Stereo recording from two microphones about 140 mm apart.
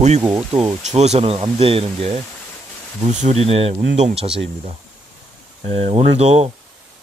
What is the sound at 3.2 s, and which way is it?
Speech, 50° right (ahead or behind).